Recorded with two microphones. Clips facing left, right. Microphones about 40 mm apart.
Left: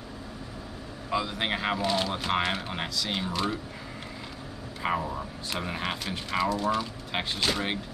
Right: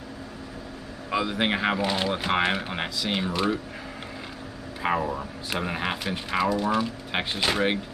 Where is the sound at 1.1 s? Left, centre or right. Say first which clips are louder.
Right 4 dB; centre.